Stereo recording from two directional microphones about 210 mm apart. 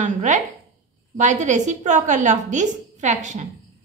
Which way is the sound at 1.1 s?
35° right (ahead or behind).